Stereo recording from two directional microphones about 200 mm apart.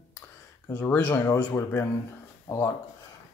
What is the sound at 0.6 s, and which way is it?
Speech, 10° left (ahead or behind).